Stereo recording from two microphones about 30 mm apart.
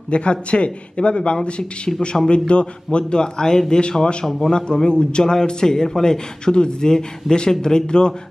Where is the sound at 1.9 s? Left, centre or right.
Centre.